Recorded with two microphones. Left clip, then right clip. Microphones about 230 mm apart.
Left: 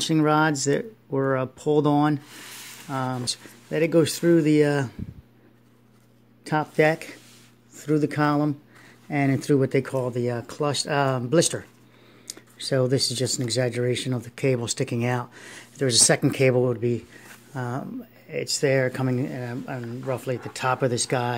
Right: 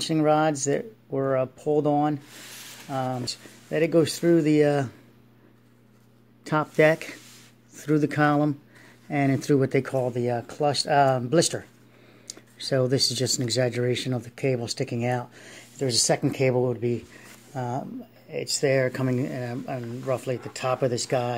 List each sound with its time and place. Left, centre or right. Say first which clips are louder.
0.0 s speech: left 1 dB; centre
6.4 s speech: right 1 dB; centre